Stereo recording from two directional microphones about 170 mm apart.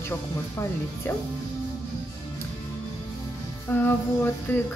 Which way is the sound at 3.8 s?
10° left (ahead or behind).